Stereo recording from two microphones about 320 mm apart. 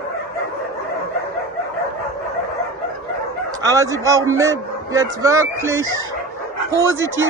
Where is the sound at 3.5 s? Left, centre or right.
Centre.